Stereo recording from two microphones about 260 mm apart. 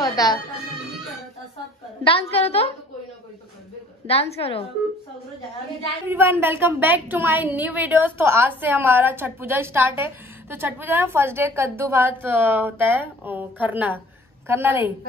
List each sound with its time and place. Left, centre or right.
0.0 s music: centre
2.0 s a woman's voice: left
4.1 s a woman's voice: left
6.0 s a woman's voice: centre